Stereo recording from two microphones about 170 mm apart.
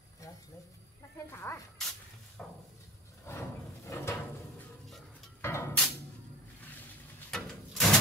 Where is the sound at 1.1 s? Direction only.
15° left (ahead or behind).